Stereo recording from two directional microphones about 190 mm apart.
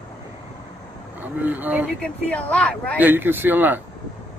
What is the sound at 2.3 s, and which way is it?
Speech, 5° left (ahead or behind).